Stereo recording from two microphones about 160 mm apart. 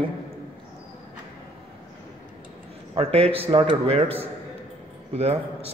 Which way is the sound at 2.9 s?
35° right (ahead or behind).